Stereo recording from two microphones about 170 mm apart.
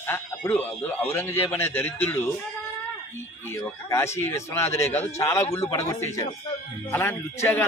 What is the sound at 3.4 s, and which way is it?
A man's voice, 15° left (ahead or behind).